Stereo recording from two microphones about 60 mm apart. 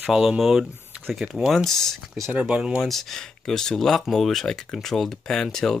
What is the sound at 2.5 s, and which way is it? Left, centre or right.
Speech, centre.